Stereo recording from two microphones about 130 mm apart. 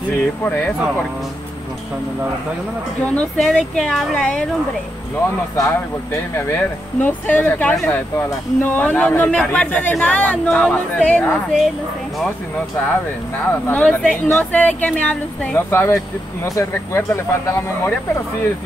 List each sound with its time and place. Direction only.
3.2 s speech: 5° left (ahead or behind)
6.3 s a man's voice: 15° left (ahead or behind)
13.5 s a man's voice: 15° left (ahead or behind)